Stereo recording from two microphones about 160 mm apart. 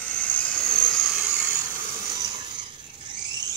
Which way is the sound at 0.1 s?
10° left (ahead or behind).